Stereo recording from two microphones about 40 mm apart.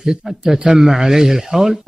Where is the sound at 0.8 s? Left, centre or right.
Centre.